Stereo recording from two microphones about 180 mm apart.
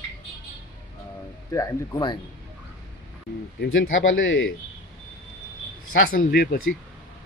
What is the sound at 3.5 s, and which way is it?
Speech, 90° left.